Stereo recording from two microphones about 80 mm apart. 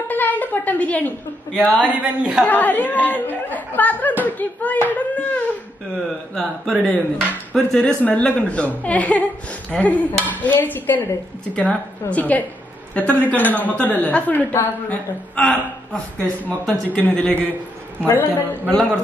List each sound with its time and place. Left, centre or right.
0.1 s a woman's voice: left
1.8 s speech: centre
2.4 s a woman's voice: left
6.3 s speech: centre
7.5 s a woman's voice: centre
11.5 s a woman's voice: centre
17.0 s a woman's voice: centre